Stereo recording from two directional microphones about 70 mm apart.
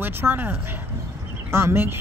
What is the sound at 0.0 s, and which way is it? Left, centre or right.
Speech, right.